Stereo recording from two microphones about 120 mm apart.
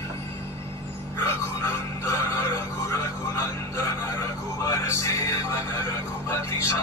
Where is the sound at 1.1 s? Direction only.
25° left (ahead or behind).